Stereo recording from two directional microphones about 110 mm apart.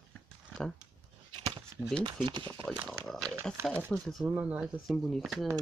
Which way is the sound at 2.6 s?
5° left (ahead or behind).